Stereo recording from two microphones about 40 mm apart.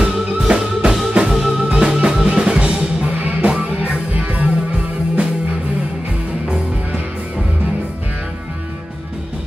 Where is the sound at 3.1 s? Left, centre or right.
Right.